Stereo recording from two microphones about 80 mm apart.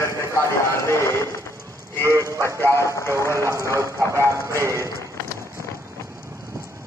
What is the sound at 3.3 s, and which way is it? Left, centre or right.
Speech, right.